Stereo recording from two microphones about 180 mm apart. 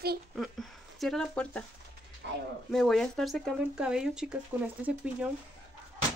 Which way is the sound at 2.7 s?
5° left (ahead or behind).